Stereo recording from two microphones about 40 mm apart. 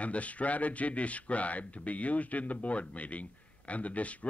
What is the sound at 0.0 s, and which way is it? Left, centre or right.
Speech, left.